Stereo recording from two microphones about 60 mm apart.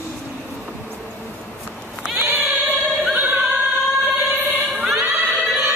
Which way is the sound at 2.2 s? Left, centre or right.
Right.